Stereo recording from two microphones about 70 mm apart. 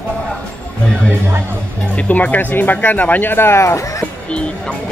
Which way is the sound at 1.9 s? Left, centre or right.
Left.